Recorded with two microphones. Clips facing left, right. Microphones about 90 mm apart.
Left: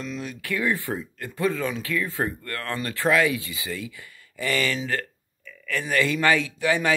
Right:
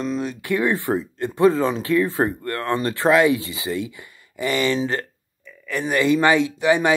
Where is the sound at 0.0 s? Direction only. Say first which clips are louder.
Right 8 dB; 30° right (ahead or behind).